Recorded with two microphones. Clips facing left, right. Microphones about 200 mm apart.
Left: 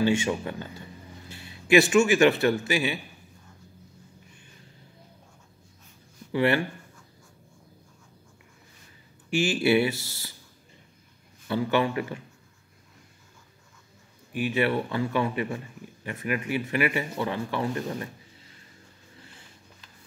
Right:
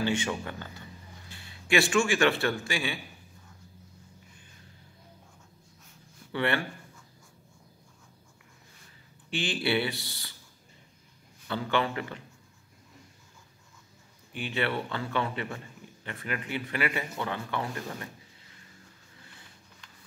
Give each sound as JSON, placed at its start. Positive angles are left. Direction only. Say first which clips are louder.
{"t": 0.2, "sound": "a man's voice", "louder": "left 5 dB", "side_deg": 20}
{"t": 6.3, "sound": "speech", "louder": "left 6 dB", "side_deg": 25}
{"t": 9.6, "sound": "speech", "louder": "left 5 dB", "side_deg": 25}
{"t": 11.4, "sound": "speech", "louder": "left 4 dB", "side_deg": 20}
{"t": 14.5, "sound": "speech", "louder": "left 4 dB", "side_deg": 20}